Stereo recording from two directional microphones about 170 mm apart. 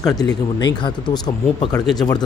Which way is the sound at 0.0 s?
20° left (ahead or behind).